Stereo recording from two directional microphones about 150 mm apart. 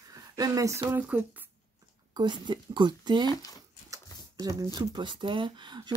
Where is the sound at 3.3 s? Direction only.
25° left (ahead or behind).